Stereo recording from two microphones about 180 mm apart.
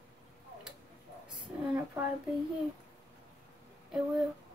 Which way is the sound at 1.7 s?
10° right (ahead or behind).